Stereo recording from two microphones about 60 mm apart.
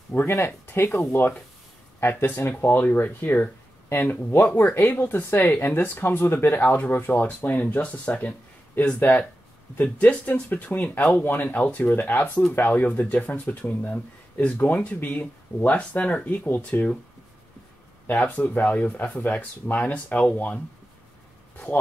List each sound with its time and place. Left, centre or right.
0.1 s speech: left
7.5 s speech: left
11.2 s speech: left
18.2 s speech: left